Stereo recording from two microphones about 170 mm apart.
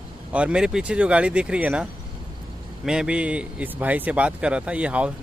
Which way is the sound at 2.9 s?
5° right (ahead or behind).